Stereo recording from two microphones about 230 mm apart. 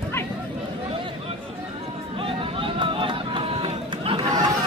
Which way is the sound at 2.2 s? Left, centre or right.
Right.